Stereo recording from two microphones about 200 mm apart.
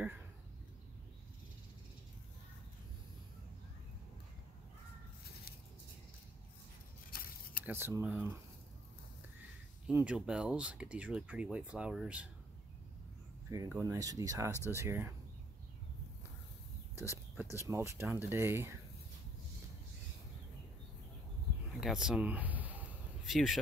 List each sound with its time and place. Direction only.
7.1 s a sound: 50° left (ahead or behind)
7.6 s speech: 10° right (ahead or behind)
9.8 s speech: 5° right (ahead or behind)
13.5 s speech: 15° right (ahead or behind)
17.6 s speech: 15° right (ahead or behind)
21.7 s a sound: 5° right (ahead or behind)